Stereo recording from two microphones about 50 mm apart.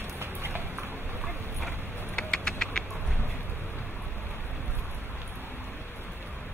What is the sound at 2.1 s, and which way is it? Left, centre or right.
Vehicle, centre.